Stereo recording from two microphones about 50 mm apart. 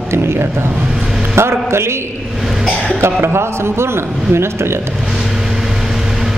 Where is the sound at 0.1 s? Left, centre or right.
Right.